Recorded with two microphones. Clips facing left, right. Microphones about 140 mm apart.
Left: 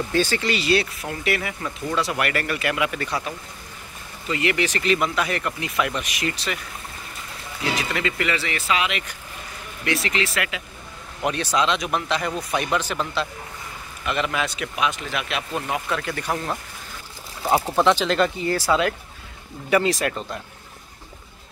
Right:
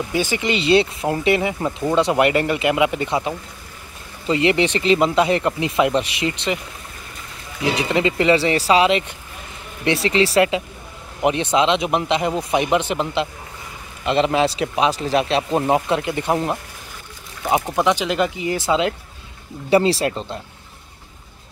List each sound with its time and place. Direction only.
0.1 s speech: 15° right (ahead or behind)
7.6 s speech: 25° right (ahead or behind)
11.2 s speech: 20° right (ahead or behind)
16.0 s speech: 20° right (ahead or behind)
17.6 s speech: 15° right (ahead or behind)